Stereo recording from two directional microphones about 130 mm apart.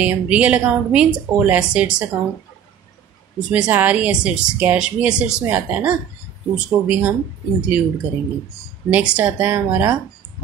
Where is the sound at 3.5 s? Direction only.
10° right (ahead or behind).